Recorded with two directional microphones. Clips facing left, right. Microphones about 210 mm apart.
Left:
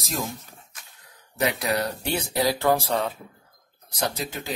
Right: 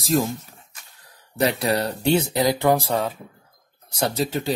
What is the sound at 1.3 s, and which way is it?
Speech, 30° right (ahead or behind).